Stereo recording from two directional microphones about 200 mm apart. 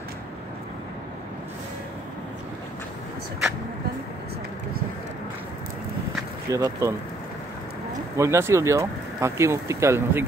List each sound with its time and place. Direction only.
6.5 s speech: 15° right (ahead or behind)
8.2 s speech: 15° right (ahead or behind)